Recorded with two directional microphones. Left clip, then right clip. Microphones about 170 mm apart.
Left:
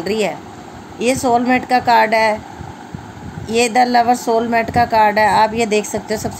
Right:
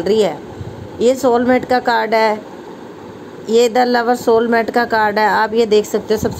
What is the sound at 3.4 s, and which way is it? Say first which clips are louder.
Speech: right 2 dB; 5° left (ahead or behind).